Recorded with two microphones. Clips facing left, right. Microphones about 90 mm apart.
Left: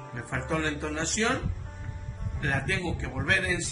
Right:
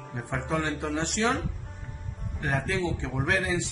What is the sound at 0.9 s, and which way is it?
Speech, 20° right (ahead or behind).